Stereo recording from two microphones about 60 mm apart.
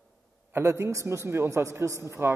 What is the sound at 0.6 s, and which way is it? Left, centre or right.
A man's voice, right.